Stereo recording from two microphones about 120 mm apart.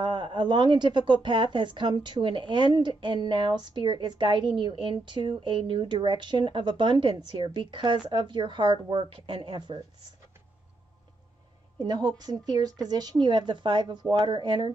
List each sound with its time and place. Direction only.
0.0 s a woman's voice: 40° right (ahead or behind)
11.8 s a woman's voice: 35° right (ahead or behind)